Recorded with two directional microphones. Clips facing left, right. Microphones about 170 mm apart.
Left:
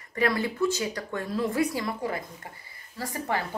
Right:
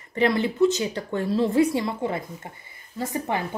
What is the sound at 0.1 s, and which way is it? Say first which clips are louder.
Speech: right 4 dB; 25° right (ahead or behind).